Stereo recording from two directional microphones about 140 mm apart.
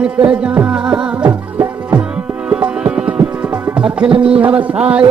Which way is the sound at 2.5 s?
10° right (ahead or behind).